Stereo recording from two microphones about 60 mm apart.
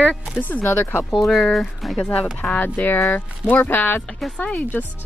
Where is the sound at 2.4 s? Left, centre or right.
Left.